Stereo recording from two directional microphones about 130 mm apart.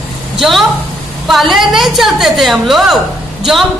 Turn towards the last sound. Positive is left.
turn(degrees=0)  # may be behind; listen again after turning